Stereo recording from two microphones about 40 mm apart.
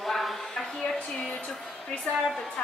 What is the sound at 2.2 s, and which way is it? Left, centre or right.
Speech, centre.